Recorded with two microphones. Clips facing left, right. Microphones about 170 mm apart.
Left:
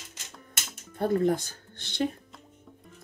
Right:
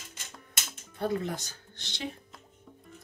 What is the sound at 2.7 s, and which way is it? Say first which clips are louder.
Music: right 1 dB; centre (ahead or behind).